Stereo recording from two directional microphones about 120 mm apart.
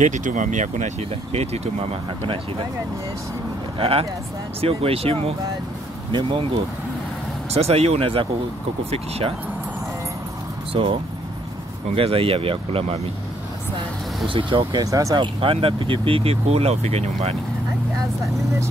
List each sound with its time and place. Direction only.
0.0 s speech: 90° right; by 2.3 s 55° right (ahead or behind)
3.7 s speech: 50° right (ahead or behind)
6.1 s speech: 45° right (ahead or behind)
7.5 s speech: 60° right (ahead or behind)
10.7 s speech: 50° right (ahead or behind)
14.2 s speech: 45° right (ahead or behind); by 15.1 s 25° right (ahead or behind)
15.1 s speech: 50° right (ahead or behind)